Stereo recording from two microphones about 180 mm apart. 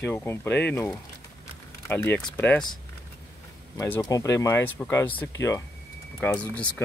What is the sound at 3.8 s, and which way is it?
Speech, 20° left (ahead or behind).